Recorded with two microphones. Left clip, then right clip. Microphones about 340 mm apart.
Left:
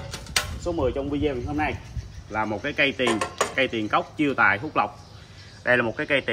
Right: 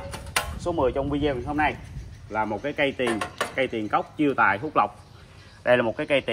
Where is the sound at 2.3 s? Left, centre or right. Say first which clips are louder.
Even; centre.